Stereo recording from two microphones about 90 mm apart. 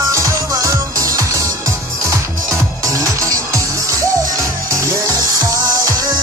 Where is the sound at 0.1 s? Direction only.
35° right (ahead or behind).